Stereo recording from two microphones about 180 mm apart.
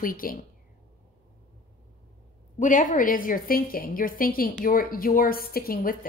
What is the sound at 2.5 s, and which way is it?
A woman's voice, 45° left (ahead or behind).